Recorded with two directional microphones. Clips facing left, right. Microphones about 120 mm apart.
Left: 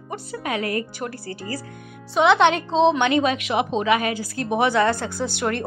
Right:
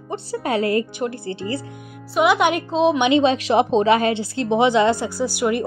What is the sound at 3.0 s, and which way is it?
Speech, 20° right (ahead or behind).